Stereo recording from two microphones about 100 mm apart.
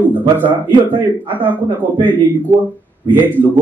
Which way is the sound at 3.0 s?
20° right (ahead or behind).